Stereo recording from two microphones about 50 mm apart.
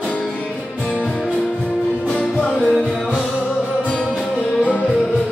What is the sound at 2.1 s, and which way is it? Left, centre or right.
Music, left.